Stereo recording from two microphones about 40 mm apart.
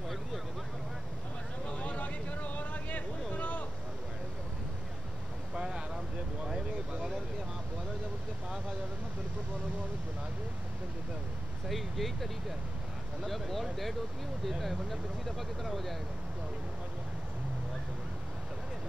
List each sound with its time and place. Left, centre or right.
1.8 s a sound: left
5.5 s vehicle: right
11.7 s speech: centre